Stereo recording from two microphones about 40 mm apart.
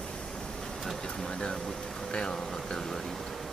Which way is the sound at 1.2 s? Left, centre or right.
Centre.